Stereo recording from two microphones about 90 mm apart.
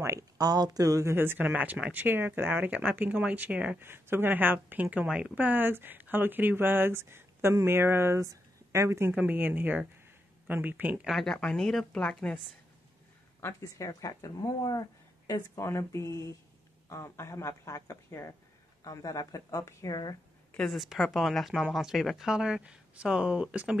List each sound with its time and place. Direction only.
0.4 s speech: 45° right (ahead or behind)
1.1 s speech: 25° right (ahead or behind)
3.8 s speech: 25° right (ahead or behind)
4.9 s speech: 10° right (ahead or behind); by 9.1 s 30° right (ahead or behind)
9.1 s speech: 15° right (ahead or behind)
11.1 s speech: centre (ahead or behind)
13.4 s a woman's voice: 30° left (ahead or behind)
15.6 s a woman's voice: 30° left (ahead or behind)
20.5 s speech: centre (ahead or behind)